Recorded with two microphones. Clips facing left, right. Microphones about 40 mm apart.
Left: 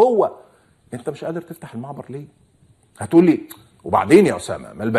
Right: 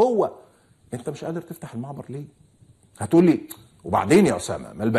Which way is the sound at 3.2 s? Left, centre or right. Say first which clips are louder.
Left 3 dB; centre.